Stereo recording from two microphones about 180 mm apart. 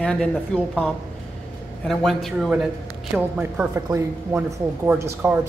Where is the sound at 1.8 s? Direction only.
Centre (ahead or behind).